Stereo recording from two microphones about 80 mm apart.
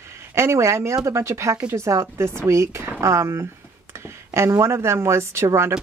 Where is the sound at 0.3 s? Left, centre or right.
Right.